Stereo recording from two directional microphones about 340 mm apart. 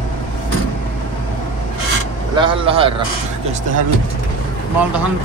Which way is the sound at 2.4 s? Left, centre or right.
Centre.